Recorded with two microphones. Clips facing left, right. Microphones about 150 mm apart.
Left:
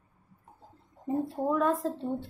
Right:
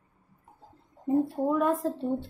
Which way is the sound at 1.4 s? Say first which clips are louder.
Left 3 dB; 10° right (ahead or behind).